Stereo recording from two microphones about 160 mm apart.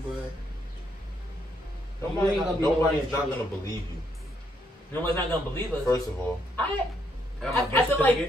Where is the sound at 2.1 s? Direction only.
15° left (ahead or behind).